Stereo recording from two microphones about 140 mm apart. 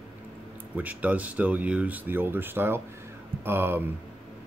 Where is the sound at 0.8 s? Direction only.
10° right (ahead or behind).